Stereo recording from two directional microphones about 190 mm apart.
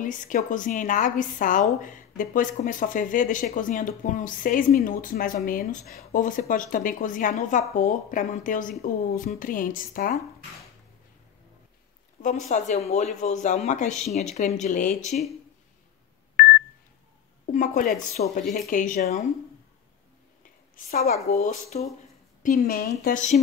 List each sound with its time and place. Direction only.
0.0 s speech: 45° left (ahead or behind)
12.2 s speech: 45° left (ahead or behind)
17.5 s speech: 45° left (ahead or behind)
20.7 s speech: 45° left (ahead or behind)
22.4 s speech: 50° left (ahead or behind)